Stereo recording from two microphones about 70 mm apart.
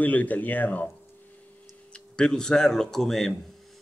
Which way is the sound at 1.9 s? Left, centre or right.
Centre.